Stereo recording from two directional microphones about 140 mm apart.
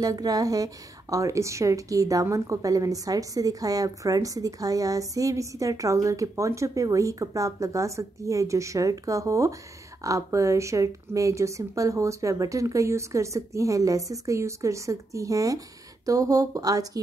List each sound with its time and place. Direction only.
0.0 s speech: 25° right (ahead or behind)